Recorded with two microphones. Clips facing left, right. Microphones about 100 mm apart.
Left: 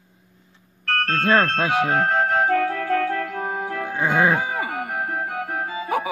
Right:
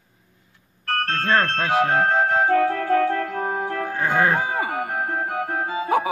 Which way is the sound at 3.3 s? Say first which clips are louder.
Right 2 dB; centre (ahead or behind).